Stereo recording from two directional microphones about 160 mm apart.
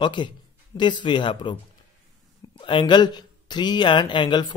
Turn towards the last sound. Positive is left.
turn(degrees=30)  # may be behind; listen again after turning